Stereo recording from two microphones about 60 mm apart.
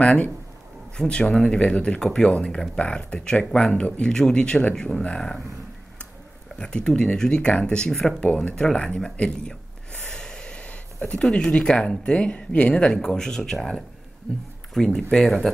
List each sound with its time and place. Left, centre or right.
0.0 s speech: left
6.5 s speech: centre
10.0 s a sound: centre
11.1 s speech: centre